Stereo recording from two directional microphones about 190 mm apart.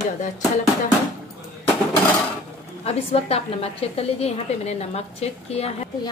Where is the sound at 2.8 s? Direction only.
30° left (ahead or behind).